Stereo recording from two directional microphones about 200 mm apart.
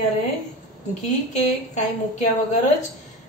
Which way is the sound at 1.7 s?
35° left (ahead or behind).